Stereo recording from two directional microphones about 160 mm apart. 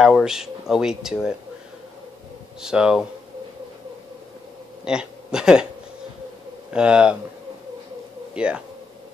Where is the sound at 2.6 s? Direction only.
5° right (ahead or behind).